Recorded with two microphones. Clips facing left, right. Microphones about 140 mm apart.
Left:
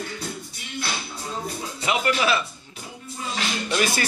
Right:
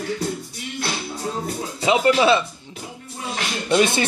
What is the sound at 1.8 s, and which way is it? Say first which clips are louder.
Speech: right 7 dB; 25° right (ahead or behind).